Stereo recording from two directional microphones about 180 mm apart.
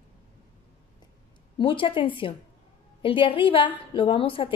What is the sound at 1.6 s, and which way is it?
A woman's voice, 30° left (ahead or behind).